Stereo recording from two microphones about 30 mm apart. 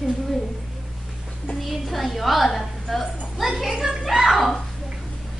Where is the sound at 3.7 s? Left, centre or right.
Centre.